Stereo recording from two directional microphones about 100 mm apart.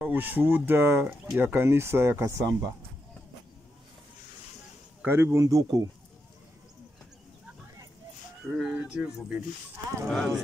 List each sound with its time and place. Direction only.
0.0 s speech: 15° right (ahead or behind)
5.0 s speech: 25° right (ahead or behind)
8.5 s speech: 10° right (ahead or behind)